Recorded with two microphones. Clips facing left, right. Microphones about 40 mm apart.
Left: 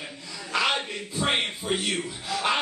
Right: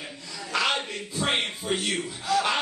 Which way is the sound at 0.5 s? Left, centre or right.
Centre.